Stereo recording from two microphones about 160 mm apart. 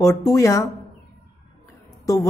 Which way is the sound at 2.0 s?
20° left (ahead or behind).